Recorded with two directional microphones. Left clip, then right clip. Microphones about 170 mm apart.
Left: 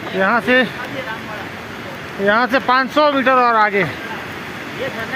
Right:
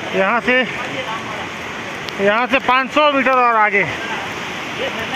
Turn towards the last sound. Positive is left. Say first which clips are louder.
# even
turn(degrees=5)  # may be behind; listen again after turning